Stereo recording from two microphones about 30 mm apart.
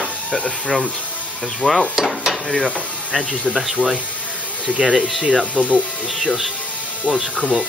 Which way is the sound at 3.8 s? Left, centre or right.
Right.